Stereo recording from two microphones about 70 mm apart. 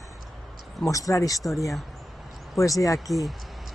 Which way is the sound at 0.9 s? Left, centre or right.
Left.